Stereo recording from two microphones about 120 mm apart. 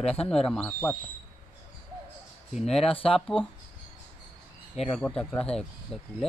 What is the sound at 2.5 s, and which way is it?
Speech, 5° left (ahead or behind).